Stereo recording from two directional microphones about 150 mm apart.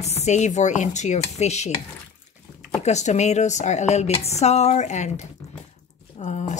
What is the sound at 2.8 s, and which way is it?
Speech, 50° left (ahead or behind).